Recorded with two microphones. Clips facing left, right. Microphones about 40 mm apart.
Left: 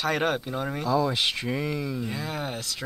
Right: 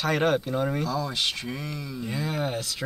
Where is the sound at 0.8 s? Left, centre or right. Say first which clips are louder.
Left 4 dB; centre.